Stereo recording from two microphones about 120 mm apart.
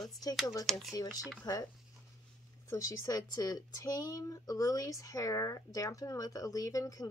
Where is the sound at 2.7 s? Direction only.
25° left (ahead or behind).